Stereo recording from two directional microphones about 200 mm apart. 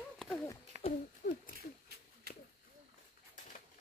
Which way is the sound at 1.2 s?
55° left (ahead or behind).